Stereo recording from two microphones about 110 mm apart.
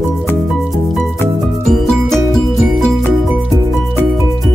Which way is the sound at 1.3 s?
Centre (ahead or behind).